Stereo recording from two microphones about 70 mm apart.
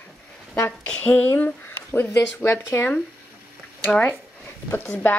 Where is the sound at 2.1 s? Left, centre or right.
Left.